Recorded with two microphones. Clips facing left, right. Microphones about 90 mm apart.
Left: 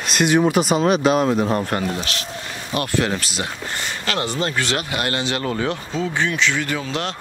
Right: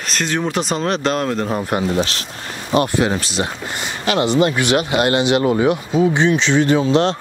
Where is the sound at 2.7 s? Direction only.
20° right (ahead or behind).